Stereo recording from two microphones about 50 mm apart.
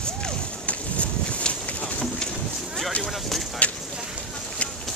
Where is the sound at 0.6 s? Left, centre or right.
Left.